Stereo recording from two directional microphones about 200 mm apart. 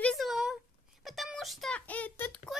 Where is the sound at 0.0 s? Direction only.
Centre (ahead or behind).